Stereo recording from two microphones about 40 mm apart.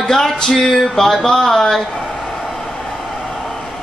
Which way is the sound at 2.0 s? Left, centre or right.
Centre.